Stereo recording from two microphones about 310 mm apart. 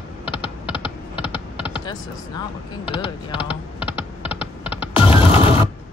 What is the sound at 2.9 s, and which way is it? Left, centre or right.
Speech, centre.